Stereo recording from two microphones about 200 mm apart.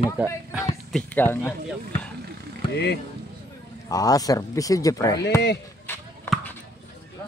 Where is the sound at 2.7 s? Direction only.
55° left (ahead or behind).